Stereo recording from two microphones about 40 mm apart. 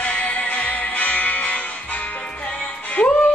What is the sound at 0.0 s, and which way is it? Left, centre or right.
Music, left.